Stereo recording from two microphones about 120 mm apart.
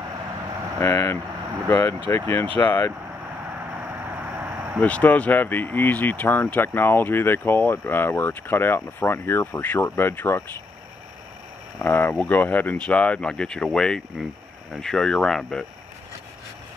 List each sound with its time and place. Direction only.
0.7 s speech: 20° left (ahead or behind)
3.7 s vehicle: 15° right (ahead or behind)
4.7 s speech: 10° left (ahead or behind)
11.8 s speech: 15° left (ahead or behind)